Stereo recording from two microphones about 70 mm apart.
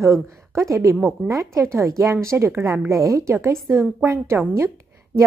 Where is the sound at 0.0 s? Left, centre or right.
Right.